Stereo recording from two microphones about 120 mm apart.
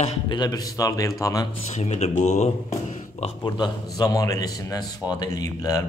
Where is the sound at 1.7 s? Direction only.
65° left (ahead or behind).